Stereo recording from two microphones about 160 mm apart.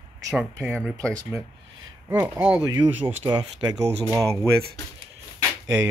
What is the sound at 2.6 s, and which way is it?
Speech, 25° right (ahead or behind).